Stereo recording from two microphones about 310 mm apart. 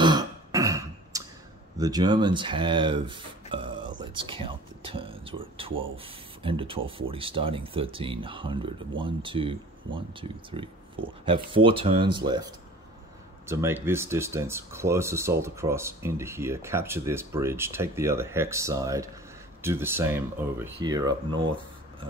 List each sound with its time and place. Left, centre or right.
0.0 s a sound: centre
1.8 s speech: centre
13.5 s speech: centre